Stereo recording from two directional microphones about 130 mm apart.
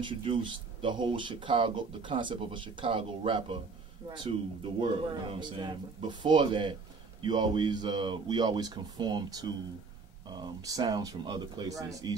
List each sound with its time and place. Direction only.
0.0 s speech: 40° right (ahead or behind)